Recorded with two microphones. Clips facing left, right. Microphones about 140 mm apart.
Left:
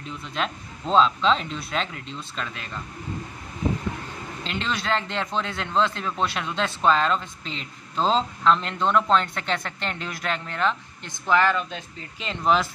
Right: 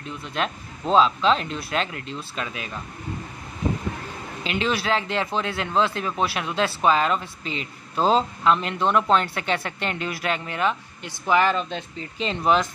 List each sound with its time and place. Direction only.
0.3 s speech: 5° right (ahead or behind)
4.4 s a man's voice: 5° right (ahead or behind)
11.5 s speech: 25° right (ahead or behind)